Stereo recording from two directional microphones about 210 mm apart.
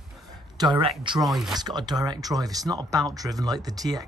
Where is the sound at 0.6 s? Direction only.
25° right (ahead or behind).